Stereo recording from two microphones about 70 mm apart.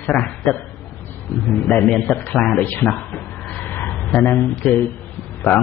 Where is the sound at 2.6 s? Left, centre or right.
Left.